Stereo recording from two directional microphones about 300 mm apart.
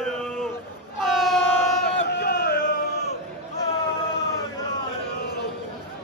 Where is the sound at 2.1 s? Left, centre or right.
Left.